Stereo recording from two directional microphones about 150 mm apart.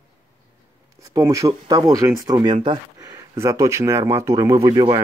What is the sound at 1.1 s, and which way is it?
Speech, 20° right (ahead or behind).